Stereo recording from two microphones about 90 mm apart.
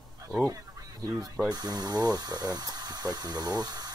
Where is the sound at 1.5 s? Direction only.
45° right (ahead or behind).